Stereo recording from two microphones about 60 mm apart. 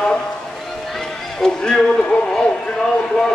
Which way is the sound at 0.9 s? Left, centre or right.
Centre.